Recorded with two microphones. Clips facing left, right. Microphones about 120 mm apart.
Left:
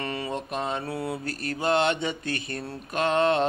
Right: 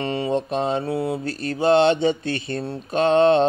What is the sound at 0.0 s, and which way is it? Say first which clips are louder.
Mantra: right 8 dB; 25° right (ahead or behind).